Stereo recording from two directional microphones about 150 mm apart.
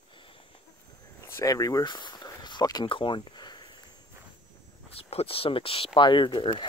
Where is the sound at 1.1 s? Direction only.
20° left (ahead or behind).